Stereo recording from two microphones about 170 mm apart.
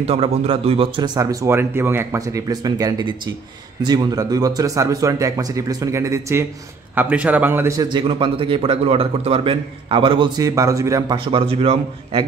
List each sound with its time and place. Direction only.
0.0 s a man's voice: 35° right (ahead or behind)